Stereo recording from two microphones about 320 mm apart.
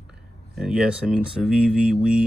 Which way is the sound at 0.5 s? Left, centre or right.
Centre.